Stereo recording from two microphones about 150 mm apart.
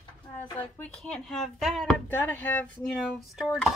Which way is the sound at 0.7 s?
5° left (ahead or behind).